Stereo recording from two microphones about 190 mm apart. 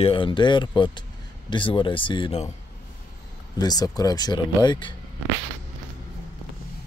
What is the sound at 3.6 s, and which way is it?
Speech, 20° left (ahead or behind).